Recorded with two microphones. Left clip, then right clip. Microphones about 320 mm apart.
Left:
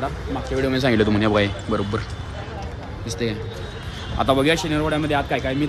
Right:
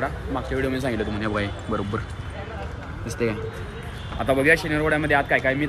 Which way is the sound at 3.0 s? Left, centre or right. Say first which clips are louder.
Right 1 dB; centre.